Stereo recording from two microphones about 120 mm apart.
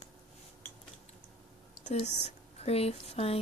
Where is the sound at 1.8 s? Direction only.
70° left (ahead or behind).